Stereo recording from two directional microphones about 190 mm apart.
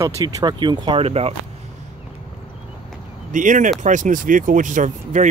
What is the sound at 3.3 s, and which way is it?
Speech, 40° right (ahead or behind).